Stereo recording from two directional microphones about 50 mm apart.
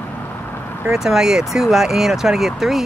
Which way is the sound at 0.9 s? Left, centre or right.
Centre.